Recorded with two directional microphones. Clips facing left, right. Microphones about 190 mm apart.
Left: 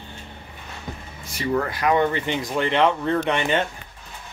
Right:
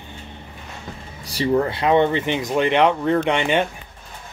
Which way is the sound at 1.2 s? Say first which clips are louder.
Right 5 dB; 30° right (ahead or behind).